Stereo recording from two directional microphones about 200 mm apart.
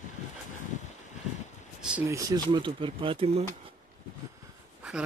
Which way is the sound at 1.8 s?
5° right (ahead or behind).